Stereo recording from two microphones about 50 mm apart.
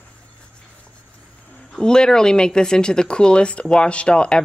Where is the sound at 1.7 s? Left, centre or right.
Centre.